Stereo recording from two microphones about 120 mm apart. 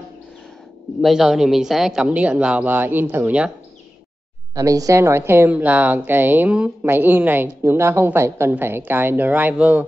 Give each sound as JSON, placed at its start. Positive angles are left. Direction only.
{"t": 1.0, "sound": "a woman's voice", "side_deg": -5}
{"t": 4.6, "sound": "a woman's voice", "side_deg": -30}